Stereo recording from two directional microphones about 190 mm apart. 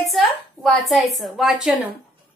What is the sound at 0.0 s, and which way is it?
A woman's voice, centre (ahead or behind).